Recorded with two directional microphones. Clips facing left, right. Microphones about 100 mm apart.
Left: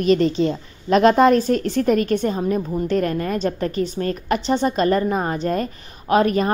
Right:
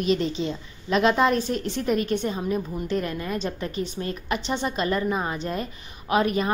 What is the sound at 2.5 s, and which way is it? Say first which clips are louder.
Speech: left 6 dB; 30° left (ahead or behind).